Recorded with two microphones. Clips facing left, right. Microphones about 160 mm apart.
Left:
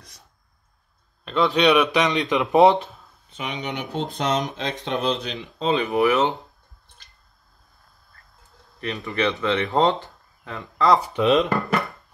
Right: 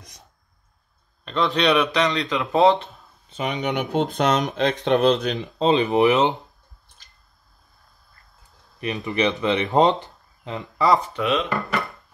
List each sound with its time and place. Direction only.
1.2 s a man's voice: centre (ahead or behind)
2.0 s speech: 15° left (ahead or behind)
3.3 s speech: 45° right (ahead or behind)
4.0 s speech: 70° right (ahead or behind); by 5.7 s 40° right (ahead or behind)
5.7 s speech: 20° right (ahead or behind)
8.8 s speech: 20° right (ahead or behind)
11.2 s speech: 40° left (ahead or behind)